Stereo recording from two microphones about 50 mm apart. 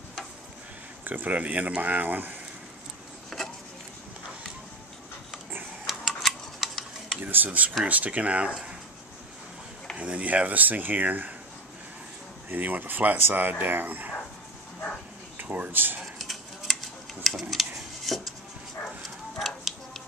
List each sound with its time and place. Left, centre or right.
1.0 s speech: right
5.9 s tick-tock: centre
7.2 s speech: right
9.9 s speech: right
12.4 s speech: right
15.4 s speech: right
16.2 s a sound: centre